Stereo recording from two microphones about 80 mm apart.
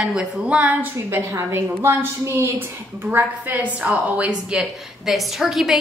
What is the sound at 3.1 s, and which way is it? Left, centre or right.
A woman's voice, right.